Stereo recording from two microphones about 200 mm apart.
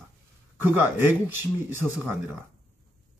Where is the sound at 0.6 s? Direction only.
10° right (ahead or behind).